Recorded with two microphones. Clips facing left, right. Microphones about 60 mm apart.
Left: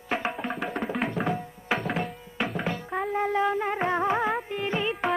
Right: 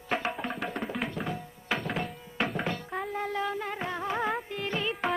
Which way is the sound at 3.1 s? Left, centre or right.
Left.